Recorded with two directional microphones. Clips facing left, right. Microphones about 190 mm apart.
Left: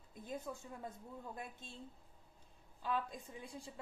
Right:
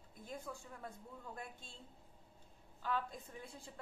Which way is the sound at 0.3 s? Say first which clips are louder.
Left 3 dB; 20° left (ahead or behind).